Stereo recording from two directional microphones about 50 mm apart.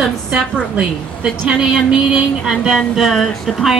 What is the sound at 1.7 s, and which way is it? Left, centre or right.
Music, centre.